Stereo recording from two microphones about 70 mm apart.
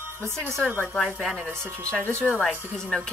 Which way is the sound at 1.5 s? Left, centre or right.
Right.